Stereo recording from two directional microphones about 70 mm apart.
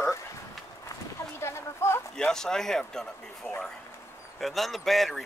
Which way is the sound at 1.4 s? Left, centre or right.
Left.